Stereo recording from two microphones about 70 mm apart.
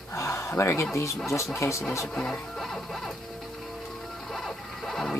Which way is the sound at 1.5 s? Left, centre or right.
Left.